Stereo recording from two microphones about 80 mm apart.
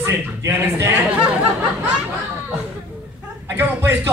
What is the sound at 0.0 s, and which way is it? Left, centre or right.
Speech, right.